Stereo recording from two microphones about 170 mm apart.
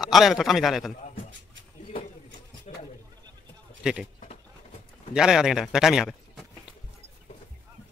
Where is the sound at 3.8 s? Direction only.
5° right (ahead or behind).